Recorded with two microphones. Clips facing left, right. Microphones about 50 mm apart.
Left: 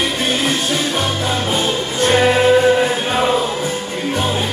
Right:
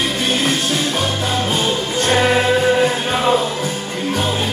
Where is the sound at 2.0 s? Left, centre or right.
Centre.